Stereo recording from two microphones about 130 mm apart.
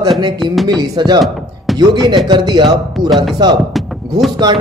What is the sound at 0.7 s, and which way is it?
A man's voice, 30° right (ahead or behind).